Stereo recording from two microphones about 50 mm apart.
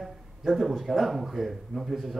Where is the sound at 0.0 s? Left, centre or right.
Centre.